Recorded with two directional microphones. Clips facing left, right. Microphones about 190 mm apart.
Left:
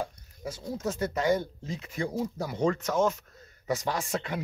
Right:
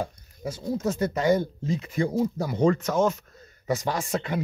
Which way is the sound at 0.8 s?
35° right (ahead or behind).